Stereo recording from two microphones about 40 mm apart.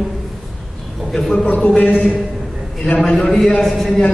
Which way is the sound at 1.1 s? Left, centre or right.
Centre.